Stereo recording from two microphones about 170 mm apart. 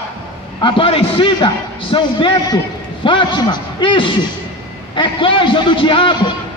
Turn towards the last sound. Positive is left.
turn(degrees=30)  # may be behind; listen again after turning